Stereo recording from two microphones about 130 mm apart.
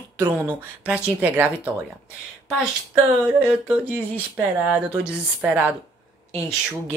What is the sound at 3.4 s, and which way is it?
Speech, 10° right (ahead or behind).